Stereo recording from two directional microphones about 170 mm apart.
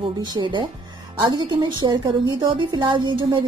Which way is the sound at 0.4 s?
25° right (ahead or behind).